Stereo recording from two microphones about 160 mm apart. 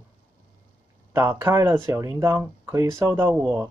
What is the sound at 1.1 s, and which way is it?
Speech, 15° right (ahead or behind).